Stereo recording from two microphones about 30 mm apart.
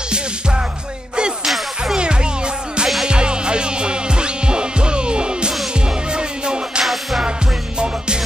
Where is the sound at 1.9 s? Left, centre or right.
Right.